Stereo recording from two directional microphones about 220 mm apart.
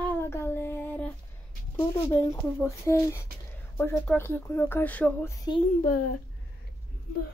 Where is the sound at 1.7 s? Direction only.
15° left (ahead or behind).